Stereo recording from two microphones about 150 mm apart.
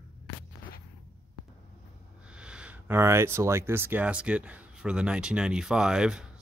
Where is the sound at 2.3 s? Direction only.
5° right (ahead or behind).